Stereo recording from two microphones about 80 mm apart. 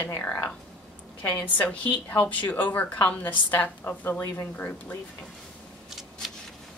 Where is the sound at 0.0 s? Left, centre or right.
Left.